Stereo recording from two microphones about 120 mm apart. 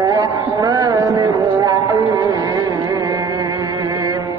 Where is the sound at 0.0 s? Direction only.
30° right (ahead or behind).